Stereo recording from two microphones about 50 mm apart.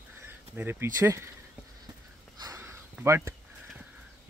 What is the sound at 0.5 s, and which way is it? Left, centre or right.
Speech, right.